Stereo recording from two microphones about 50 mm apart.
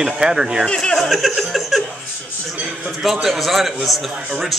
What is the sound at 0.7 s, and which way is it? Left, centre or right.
Speech, centre.